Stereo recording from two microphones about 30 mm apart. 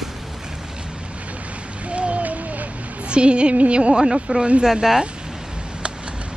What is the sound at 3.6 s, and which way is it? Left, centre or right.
Speech, right.